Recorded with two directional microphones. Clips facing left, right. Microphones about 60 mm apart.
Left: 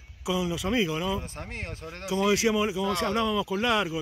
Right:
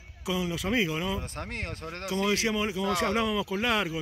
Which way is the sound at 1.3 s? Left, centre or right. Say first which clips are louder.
Right 2 dB; right.